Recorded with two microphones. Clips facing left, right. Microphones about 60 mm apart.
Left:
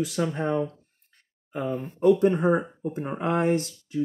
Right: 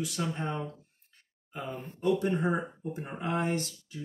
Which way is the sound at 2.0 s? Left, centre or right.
Left.